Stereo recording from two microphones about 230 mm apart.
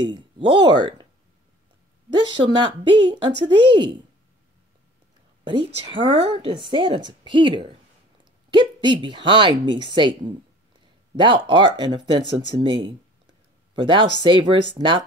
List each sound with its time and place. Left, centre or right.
0.0 s a woman's voice: right
2.3 s a woman's voice: right
5.4 s a woman's voice: right
11.1 s a woman's voice: right